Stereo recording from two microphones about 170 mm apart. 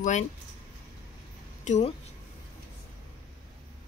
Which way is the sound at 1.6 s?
45° left (ahead or behind).